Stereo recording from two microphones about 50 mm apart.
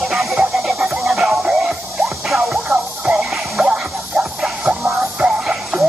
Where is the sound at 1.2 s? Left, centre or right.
Centre.